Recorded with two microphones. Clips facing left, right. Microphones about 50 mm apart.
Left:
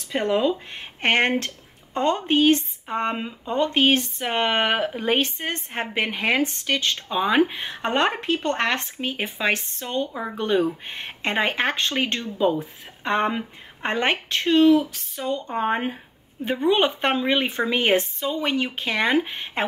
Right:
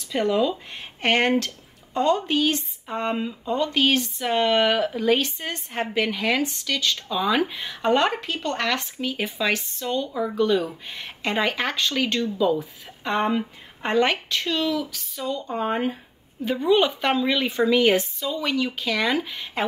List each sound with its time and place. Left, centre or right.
0.1 s speech: left